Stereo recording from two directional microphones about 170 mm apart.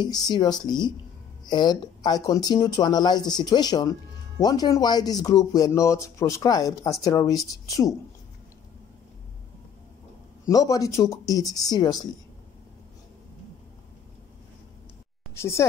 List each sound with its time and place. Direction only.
0.0 s speech: 25° left (ahead or behind)
10.5 s speech: 20° left (ahead or behind)